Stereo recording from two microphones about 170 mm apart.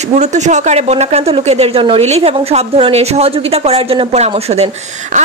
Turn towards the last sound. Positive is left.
turn(degrees=-40)  # may be behind; listen again after turning